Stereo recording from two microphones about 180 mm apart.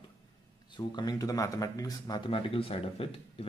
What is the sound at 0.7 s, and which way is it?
Speech, 25° left (ahead or behind).